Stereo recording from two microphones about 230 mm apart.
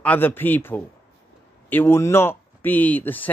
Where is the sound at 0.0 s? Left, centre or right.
Centre.